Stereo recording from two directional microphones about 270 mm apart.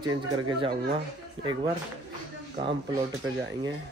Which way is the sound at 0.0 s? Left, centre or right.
Centre.